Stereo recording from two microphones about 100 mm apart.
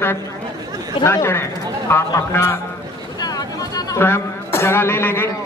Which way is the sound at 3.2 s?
40° left (ahead or behind).